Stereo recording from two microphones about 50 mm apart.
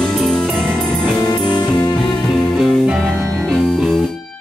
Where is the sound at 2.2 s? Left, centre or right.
Centre.